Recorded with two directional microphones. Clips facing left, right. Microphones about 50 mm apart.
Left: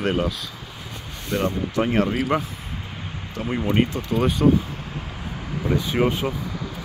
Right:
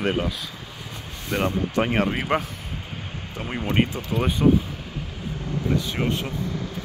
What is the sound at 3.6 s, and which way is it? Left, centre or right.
Speech, right.